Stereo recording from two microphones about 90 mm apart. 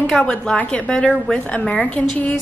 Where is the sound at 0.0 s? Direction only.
10° left (ahead or behind).